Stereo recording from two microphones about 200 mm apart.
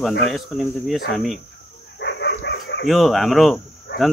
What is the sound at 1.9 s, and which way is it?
Dog, 60° left (ahead or behind).